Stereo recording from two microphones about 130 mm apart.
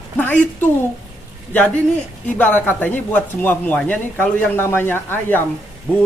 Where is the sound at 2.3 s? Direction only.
15° left (ahead or behind).